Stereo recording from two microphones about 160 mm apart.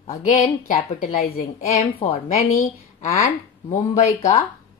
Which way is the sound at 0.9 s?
60° left (ahead or behind).